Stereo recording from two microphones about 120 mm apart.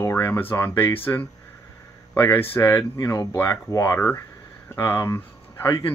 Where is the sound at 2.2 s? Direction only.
15° left (ahead or behind).